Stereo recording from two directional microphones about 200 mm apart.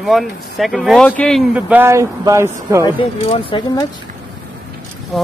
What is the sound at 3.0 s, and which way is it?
Speech, 25° left (ahead or behind).